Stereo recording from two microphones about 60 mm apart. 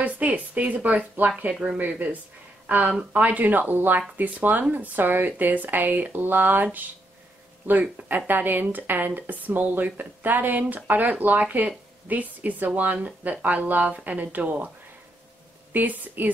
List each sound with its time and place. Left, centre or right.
0.0 s speech: right
1.5 s speech: centre
1.8 s speech: right
8.3 s speech: right
15.7 s speech: right